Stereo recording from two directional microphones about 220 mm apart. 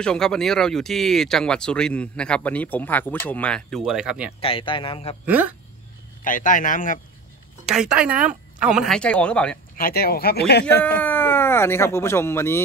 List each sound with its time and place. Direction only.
0.0 s speech: 5° left (ahead or behind)
4.4 s speech: 25° left (ahead or behind)
5.2 s speech: 5° right (ahead or behind)
6.2 s a man's voice: 35° left (ahead or behind)
7.6 s speech: 5° right (ahead or behind)
9.8 s speech: 40° left (ahead or behind)
10.8 s speech: 10° left (ahead or behind)